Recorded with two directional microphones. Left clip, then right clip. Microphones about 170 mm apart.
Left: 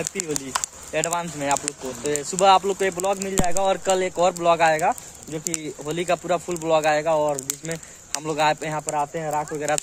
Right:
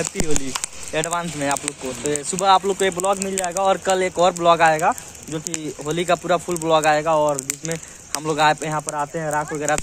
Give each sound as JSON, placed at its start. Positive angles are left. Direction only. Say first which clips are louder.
{"t": 0.2, "sound": "sizzle", "louder": "right 2 dB", "side_deg": 40}
{"t": 0.9, "sound": "speech", "louder": "right 2 dB", "side_deg": 0}
{"t": 3.2, "sound": "speech", "louder": "right 1 dB", "side_deg": 45}
{"t": 3.6, "sound": "speech", "louder": "right 4 dB", "side_deg": 5}